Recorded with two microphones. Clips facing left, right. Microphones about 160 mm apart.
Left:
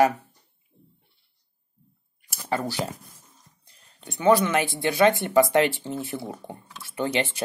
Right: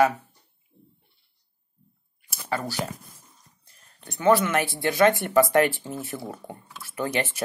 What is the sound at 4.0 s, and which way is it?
Speech, 15° left (ahead or behind).